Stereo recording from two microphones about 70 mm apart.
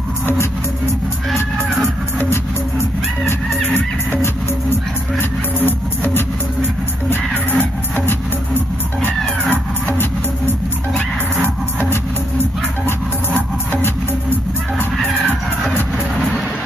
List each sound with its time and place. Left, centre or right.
2.1 s music: left
3.7 s music: left
11.4 s music: left